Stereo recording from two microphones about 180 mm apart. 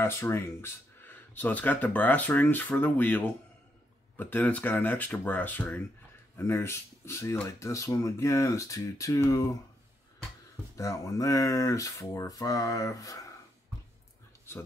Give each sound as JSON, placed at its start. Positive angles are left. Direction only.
{"t": 0.0, "sound": "speech", "side_deg": 15}
{"t": 10.8, "sound": "speech", "side_deg": 20}